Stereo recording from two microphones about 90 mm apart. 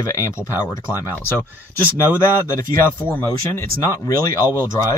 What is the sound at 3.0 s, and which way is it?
Speech, 20° left (ahead or behind).